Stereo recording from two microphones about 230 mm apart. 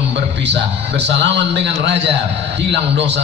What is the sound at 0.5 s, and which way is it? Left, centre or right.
A man's voice, right.